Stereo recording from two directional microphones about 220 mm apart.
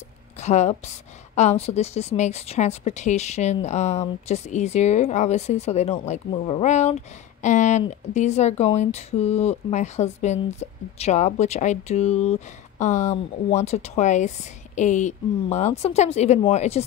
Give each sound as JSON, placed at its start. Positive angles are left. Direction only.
{"t": 0.4, "sound": "speech", "side_deg": 30}